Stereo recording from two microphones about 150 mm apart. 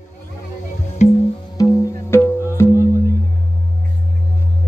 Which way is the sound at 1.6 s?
25° left (ahead or behind).